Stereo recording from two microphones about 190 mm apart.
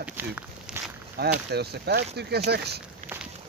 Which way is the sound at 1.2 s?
55° right (ahead or behind).